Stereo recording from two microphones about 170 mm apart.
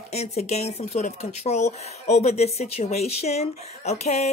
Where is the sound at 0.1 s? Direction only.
40° left (ahead or behind).